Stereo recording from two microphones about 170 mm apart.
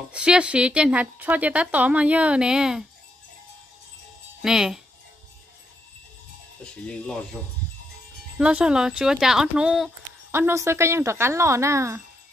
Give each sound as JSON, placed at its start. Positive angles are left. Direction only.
{"t": 0.1, "sound": "a woman's voice", "side_deg": -5}
{"t": 4.4, "sound": "speech", "side_deg": -5}
{"t": 6.6, "sound": "speech", "side_deg": 5}
{"t": 8.4, "sound": "speech", "side_deg": -5}
{"t": 10.3, "sound": "a woman's voice", "side_deg": -15}